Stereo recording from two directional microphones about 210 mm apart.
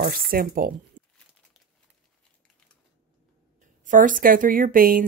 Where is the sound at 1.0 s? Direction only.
25° right (ahead or behind).